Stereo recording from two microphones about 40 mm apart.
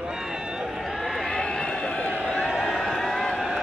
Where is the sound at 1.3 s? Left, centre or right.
Centre.